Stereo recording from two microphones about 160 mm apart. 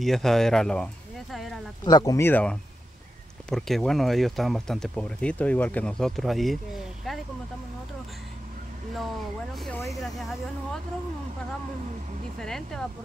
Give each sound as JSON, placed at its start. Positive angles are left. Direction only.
{"t": 0.0, "sound": "speech", "side_deg": 0}
{"t": 1.3, "sound": "a sound", "side_deg": 0}
{"t": 1.9, "sound": "speech", "side_deg": 25}
{"t": 9.7, "sound": "speech", "side_deg": 15}
{"t": 9.9, "sound": "speech", "side_deg": 0}
{"t": 12.4, "sound": "speech", "side_deg": 5}